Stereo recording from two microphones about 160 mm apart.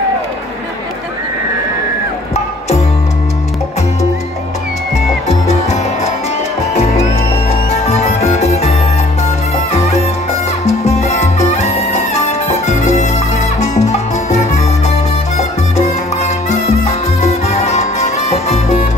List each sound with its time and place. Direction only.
7.7 s music: 45° left (ahead or behind)